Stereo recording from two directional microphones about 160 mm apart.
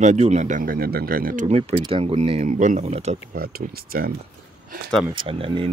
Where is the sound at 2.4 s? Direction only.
55° right (ahead or behind).